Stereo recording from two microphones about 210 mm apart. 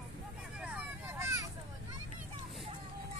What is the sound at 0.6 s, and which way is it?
Vehicle, 10° right (ahead or behind).